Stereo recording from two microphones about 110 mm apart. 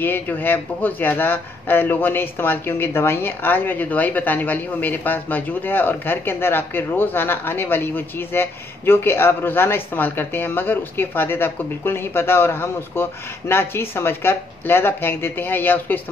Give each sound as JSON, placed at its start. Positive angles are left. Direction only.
{"t": 0.0, "sound": "speech", "side_deg": 20}